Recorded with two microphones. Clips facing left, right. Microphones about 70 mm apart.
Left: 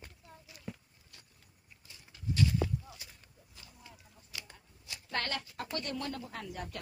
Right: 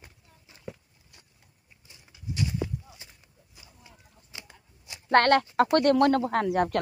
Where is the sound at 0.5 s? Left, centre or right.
Right.